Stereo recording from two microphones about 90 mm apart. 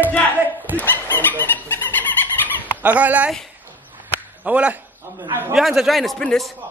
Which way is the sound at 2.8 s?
15° right (ahead or behind).